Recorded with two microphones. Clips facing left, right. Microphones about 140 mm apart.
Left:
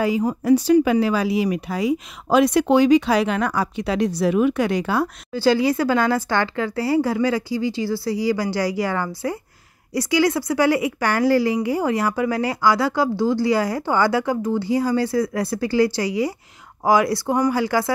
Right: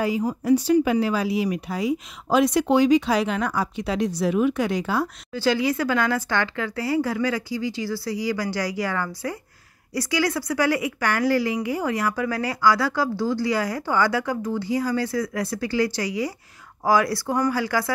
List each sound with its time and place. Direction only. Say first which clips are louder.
0.0 s speech: left 3 dB; 75° left (ahead or behind)
5.3 s a woman's voice: left 4 dB; 35° left (ahead or behind)